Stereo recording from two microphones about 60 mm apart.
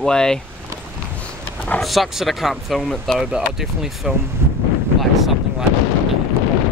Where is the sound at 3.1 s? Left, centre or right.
Centre.